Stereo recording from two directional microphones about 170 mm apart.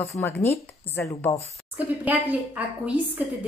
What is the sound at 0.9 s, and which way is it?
Speech, 15° left (ahead or behind).